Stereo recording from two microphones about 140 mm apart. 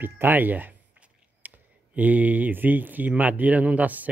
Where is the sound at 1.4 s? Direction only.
10° right (ahead or behind).